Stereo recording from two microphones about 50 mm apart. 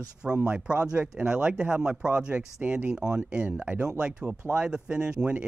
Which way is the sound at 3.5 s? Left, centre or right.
Right.